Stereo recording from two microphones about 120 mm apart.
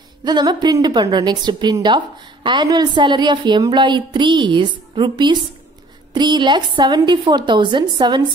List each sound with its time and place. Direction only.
0.2 s a woman's voice: 35° right (ahead or behind)